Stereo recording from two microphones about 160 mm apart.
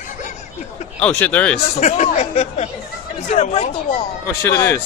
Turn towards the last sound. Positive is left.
turn(degrees=15)  # may be behind; listen again after turning